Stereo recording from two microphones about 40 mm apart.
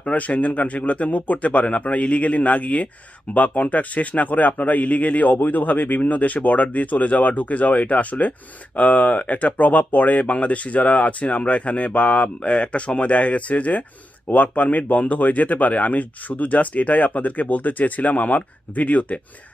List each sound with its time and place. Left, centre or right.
0.0 s speech: left